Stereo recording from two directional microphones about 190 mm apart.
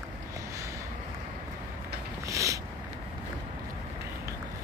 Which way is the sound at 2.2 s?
15° right (ahead or behind).